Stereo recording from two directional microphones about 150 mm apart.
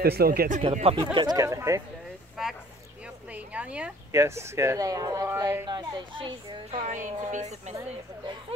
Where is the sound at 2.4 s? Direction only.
5° right (ahead or behind).